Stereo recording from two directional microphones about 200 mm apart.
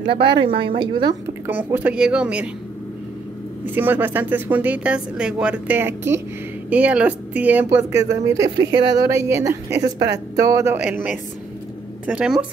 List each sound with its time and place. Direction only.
0.1 s a woman's voice: 25° right (ahead or behind)
1.5 s speech: 10° right (ahead or behind)
3.6 s speech: 10° right (ahead or behind)